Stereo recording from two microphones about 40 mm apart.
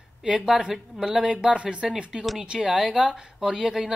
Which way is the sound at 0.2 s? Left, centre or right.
Centre.